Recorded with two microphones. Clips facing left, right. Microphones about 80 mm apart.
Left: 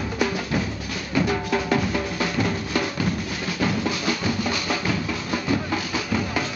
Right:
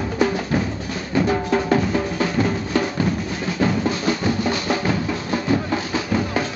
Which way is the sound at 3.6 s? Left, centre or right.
Right.